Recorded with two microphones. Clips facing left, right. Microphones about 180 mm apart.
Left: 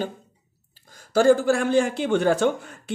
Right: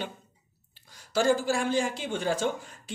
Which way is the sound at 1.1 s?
55° left (ahead or behind).